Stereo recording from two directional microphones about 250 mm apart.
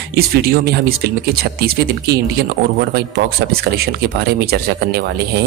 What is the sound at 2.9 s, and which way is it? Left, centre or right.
Speech, right.